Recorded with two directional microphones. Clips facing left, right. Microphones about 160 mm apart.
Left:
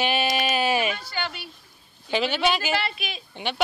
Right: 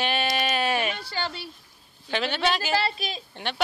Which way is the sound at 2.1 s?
5° left (ahead or behind).